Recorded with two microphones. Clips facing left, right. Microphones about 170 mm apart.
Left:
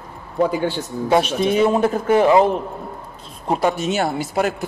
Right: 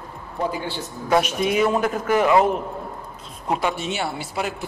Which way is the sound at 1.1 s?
30° left (ahead or behind).